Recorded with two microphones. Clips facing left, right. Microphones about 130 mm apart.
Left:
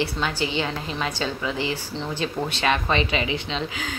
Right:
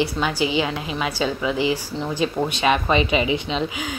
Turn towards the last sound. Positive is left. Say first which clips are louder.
# right 4 dB
turn(degrees=-15)  # may be behind; listen again after turning